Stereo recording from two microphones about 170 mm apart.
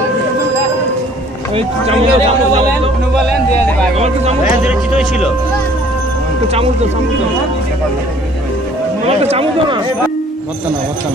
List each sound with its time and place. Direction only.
1.5 s speech: 35° right (ahead or behind)
4.0 s speech: 40° right (ahead or behind)
4.6 s speech: 5° right (ahead or behind)
6.5 s speech: 35° right (ahead or behind)
9.0 s speech: 35° right (ahead or behind)